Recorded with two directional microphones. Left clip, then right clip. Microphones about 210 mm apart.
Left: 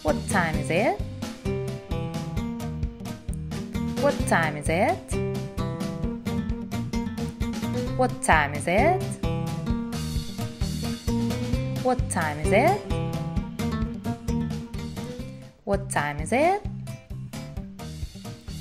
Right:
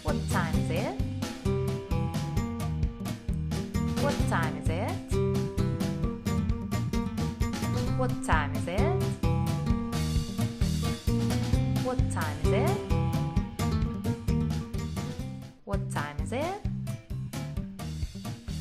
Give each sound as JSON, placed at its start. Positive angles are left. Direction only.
{"t": 0.1, "sound": "music", "side_deg": 15}
{"t": 0.7, "sound": "music", "side_deg": 0}
{"t": 3.4, "sound": "music", "side_deg": 0}
{"t": 4.4, "sound": "music", "side_deg": 10}
{"t": 8.5, "sound": "speech", "side_deg": 10}
{"t": 9.5, "sound": "music", "side_deg": 0}
{"t": 12.3, "sound": "speech", "side_deg": 0}
{"t": 13.6, "sound": "music", "side_deg": 0}
{"t": 15.7, "sound": "speech", "side_deg": 10}